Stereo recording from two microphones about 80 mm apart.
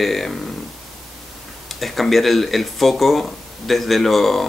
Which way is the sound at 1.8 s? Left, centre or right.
Centre.